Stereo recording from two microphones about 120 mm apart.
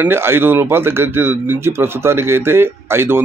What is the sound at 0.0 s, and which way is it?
Speech, 20° right (ahead or behind).